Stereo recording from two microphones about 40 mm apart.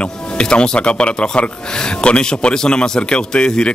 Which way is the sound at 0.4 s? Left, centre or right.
Left.